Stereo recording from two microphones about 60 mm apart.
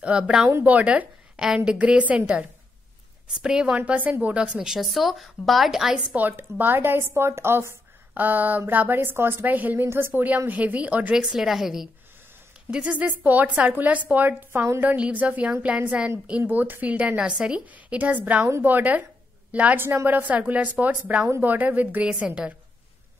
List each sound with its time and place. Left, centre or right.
0.0 s a woman's voice: centre
1.4 s a woman's voice: centre
3.3 s speech: centre
4.6 s a woman's voice: centre
6.1 s a woman's voice: right
9.8 s a woman's voice: right
10.5 s speech: right
11.2 s a woman's voice: centre
12.7 s speech: right
14.5 s a woman's voice: right
15.0 s speech: right
17.2 s a woman's voice: centre
19.8 s a woman's voice: right
20.1 s speech: right